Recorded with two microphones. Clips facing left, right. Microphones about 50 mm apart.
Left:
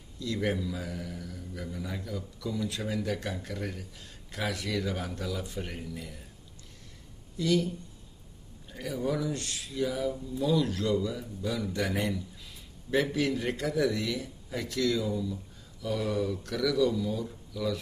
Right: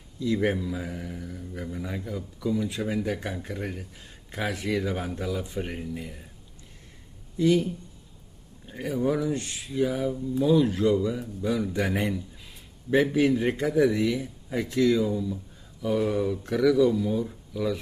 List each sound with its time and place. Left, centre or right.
0.2 s speech: right
7.3 s speech: right